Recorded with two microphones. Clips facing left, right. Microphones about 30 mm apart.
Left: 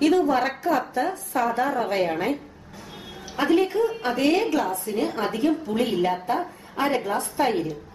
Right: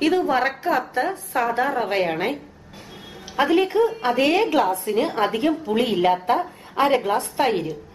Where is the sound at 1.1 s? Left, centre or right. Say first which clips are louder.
Right 1 dB; right; by 4.2 s centre.